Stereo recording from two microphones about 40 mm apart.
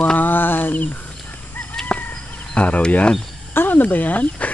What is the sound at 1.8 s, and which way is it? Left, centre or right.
Fowl, centre.